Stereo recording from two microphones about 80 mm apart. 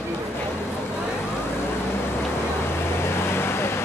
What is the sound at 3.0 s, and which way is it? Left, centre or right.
Vehicle, left.